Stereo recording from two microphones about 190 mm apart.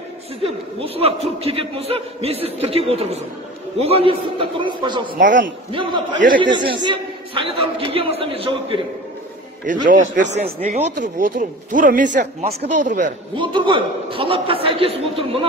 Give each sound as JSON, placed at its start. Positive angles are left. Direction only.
{"t": 0.4, "sound": "a man's voice", "side_deg": -30}
{"t": 5.1, "sound": "a man's voice", "side_deg": -45}
{"t": 6.4, "sound": "a man's voice", "side_deg": -25}
{"t": 9.7, "sound": "a man's voice", "side_deg": -45}
{"t": 13.4, "sound": "a man's voice", "side_deg": -25}